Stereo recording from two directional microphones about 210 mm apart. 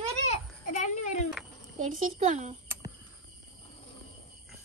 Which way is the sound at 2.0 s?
35° right (ahead or behind).